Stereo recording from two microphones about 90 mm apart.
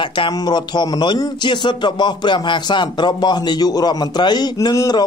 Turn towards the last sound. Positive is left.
turn(degrees=50)  # may be behind; listen again after turning